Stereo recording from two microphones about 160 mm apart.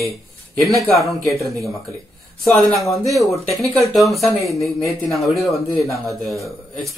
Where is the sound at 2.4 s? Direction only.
Centre (ahead or behind).